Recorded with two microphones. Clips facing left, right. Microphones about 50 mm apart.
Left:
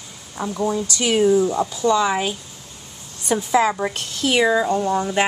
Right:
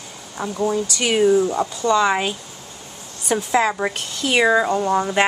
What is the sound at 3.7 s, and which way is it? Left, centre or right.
Speech, centre.